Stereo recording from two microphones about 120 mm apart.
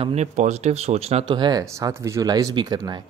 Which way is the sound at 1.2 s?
40° right (ahead or behind).